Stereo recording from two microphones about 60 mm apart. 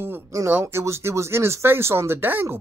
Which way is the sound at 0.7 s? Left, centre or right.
Right.